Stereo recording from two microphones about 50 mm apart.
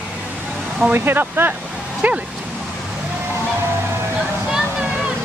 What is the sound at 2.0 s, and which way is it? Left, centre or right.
Speech, right.